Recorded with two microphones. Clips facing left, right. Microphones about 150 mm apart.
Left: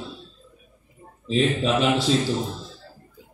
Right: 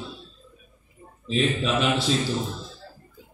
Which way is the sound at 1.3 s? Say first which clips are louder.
Left 3 dB; 35° left (ahead or behind).